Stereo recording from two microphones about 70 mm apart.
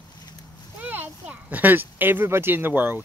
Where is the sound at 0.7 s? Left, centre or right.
Right.